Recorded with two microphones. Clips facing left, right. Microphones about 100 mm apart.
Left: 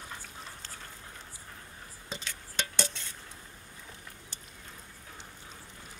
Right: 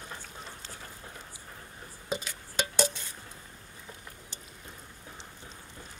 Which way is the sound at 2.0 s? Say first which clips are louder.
Right 7 dB; 15° right (ahead or behind).